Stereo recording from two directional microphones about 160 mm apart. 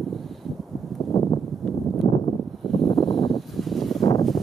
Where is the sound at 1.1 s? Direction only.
30° left (ahead or behind).